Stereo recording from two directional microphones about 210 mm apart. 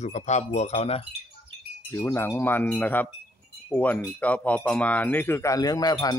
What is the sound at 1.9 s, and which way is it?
Speech, 10° left (ahead or behind).